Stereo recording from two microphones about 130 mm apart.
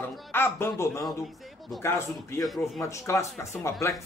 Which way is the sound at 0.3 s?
15° left (ahead or behind).